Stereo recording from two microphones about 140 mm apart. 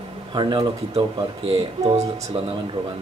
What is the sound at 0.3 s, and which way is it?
Speech, 35° right (ahead or behind).